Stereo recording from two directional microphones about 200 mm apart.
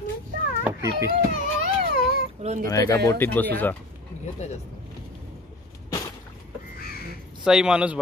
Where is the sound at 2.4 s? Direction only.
35° right (ahead or behind).